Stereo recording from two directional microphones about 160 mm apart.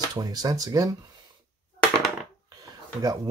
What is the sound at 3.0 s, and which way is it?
Speech, 25° right (ahead or behind).